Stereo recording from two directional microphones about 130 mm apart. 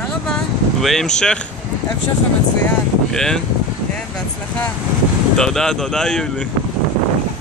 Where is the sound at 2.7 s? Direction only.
5° left (ahead or behind).